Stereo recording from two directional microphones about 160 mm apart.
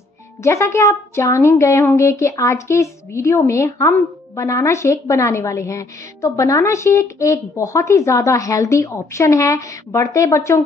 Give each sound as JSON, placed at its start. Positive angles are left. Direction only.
{"t": 0.4, "sound": "speech", "side_deg": 15}